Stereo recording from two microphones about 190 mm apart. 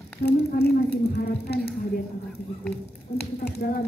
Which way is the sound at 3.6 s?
50° left (ahead or behind).